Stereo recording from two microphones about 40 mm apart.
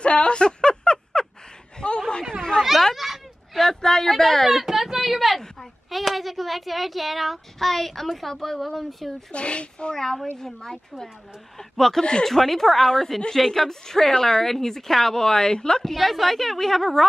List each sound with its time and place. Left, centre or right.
0.0 s a sound: left
2.8 s a sound: centre
4.5 s a sound: centre
5.9 s child singing: centre
7.5 s speech: centre
9.3 s speech: left
9.9 s a woman's voice: centre
12.0 s speech: left
12.3 s a woman's voice: centre
15.9 s speech: centre